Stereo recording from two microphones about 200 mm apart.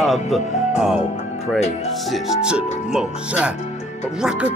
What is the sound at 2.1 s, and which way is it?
Speech, centre (ahead or behind).